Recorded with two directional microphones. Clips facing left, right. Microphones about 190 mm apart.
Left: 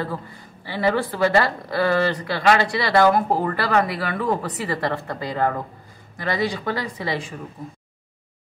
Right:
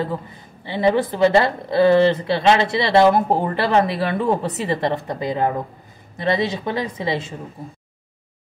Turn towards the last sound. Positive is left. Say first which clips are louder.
# right 3 dB
turn(degrees=-25)  # may be behind; listen again after turning